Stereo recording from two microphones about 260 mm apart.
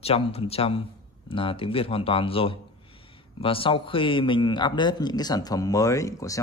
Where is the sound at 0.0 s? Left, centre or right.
Left.